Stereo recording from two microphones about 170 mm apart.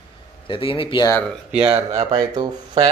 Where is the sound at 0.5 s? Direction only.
30° left (ahead or behind).